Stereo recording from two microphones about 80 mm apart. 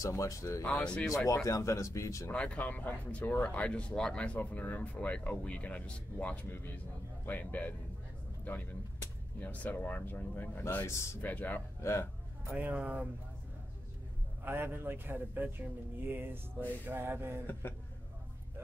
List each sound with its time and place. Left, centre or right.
0.0 s speech: left
0.7 s speech: centre
1.0 s speech: left
2.3 s a man's voice: centre
9.4 s a man's voice: left
11.2 s a man's voice: left
11.8 s speech: left
12.4 s a man's voice: right
14.4 s a man's voice: right
17.5 s speech: left